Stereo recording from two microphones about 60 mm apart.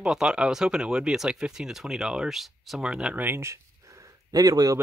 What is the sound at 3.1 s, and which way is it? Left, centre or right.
Speech, right.